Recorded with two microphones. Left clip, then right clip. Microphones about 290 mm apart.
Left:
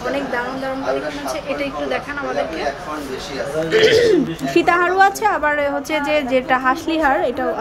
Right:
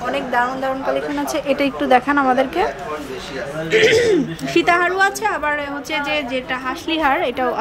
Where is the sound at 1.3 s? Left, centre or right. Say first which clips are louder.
Right 5 dB; centre.